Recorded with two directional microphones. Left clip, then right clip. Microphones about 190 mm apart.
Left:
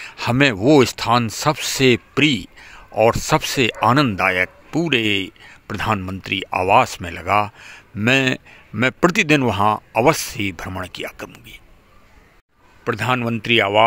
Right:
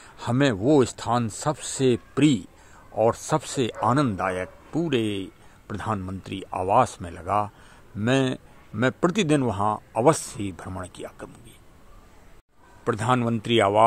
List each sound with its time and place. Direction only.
0.0 s a sound: 10° left (ahead or behind)
0.7 s a man's voice: 15° left (ahead or behind)
12.8 s speech: 5° left (ahead or behind)